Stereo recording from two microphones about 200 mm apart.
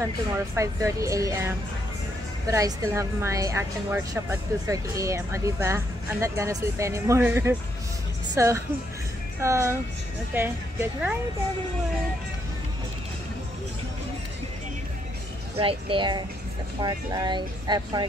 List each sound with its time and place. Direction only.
0.6 s a woman's voice: 15° right (ahead or behind)
2.5 s a woman's voice: 15° right (ahead or behind)
15.5 s speech: 25° right (ahead or behind)